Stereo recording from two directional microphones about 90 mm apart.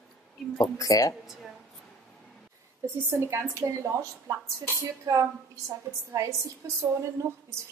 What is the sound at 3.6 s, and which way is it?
A woman's voice, 40° right (ahead or behind).